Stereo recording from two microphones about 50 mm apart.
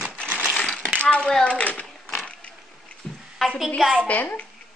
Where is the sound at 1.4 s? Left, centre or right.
Left.